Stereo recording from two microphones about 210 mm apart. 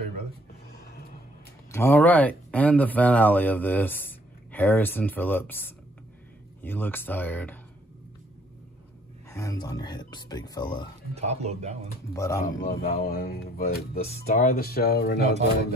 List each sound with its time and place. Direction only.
1.7 s speech: 10° left (ahead or behind)
9.3 s speech: 15° left (ahead or behind)
11.1 s speech: 30° right (ahead or behind)
12.1 s speech: 15° left (ahead or behind)
12.4 s speech: 40° left (ahead or behind)